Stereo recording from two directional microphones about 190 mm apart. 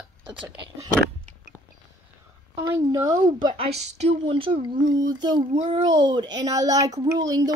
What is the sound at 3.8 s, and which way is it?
Speech, 35° right (ahead or behind).